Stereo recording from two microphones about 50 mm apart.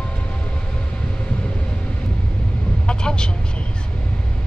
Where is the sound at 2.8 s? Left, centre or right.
Centre.